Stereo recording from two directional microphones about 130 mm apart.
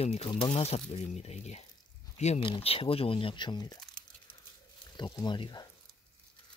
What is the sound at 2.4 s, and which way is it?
Speech, 45° left (ahead or behind).